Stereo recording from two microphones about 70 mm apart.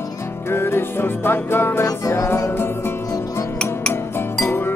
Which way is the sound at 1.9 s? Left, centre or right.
Left.